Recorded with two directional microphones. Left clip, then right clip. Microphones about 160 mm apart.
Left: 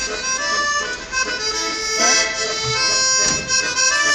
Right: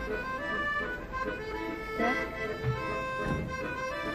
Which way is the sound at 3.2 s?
5° left (ahead or behind).